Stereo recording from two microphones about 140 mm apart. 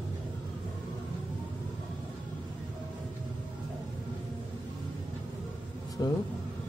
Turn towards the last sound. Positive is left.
turn(degrees=20)  # may be behind; listen again after turning